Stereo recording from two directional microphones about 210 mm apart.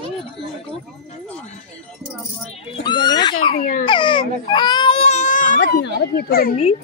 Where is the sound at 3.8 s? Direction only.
20° left (ahead or behind).